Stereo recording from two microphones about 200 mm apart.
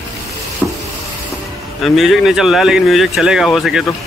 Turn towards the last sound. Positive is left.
turn(degrees=0)  # may be behind; listen again after turning